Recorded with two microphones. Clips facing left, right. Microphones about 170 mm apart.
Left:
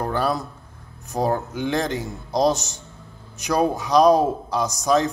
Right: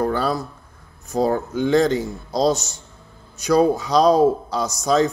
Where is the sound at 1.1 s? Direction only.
15° left (ahead or behind).